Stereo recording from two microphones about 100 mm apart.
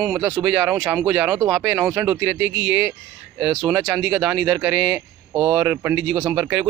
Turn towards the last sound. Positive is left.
turn(degrees=-15)  # may be behind; listen again after turning